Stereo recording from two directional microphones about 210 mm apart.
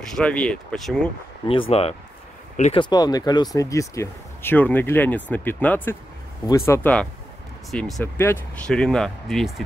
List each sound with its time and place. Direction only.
0.0 s speech: 5° left (ahead or behind)
1.5 s speech: 25° left (ahead or behind)
2.8 s speech: 20° left (ahead or behind); by 9.5 s centre (ahead or behind)